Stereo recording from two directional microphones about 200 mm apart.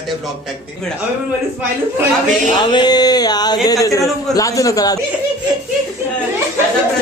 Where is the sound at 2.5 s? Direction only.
25° left (ahead or behind).